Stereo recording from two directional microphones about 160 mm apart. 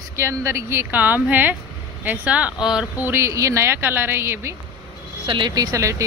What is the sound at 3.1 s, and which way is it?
Speech, 15° right (ahead or behind).